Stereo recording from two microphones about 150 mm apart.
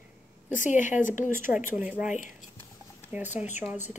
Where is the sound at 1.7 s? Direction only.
10° right (ahead or behind).